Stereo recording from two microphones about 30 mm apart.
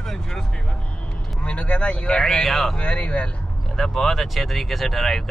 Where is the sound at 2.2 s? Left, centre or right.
Centre.